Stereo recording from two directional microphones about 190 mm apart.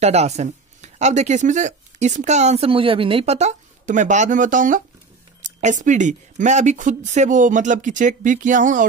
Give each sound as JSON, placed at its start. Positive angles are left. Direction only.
{"t": 0.0, "sound": "speech", "side_deg": -35}